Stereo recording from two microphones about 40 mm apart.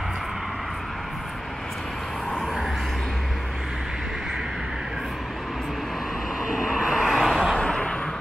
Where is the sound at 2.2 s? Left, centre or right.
Centre.